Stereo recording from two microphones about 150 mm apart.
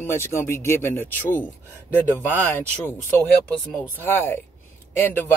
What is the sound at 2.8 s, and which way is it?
Speech, 10° left (ahead or behind).